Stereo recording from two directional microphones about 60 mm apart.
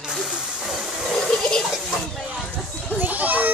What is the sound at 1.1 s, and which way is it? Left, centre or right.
Toilet flush, centre.